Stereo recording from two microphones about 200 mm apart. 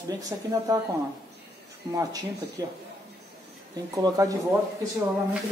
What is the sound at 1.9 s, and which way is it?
Speech, 15° right (ahead or behind).